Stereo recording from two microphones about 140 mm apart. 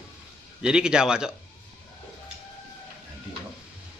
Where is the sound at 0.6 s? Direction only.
5° right (ahead or behind).